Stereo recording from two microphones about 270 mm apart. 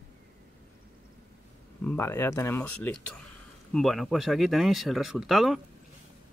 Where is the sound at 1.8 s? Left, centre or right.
Centre.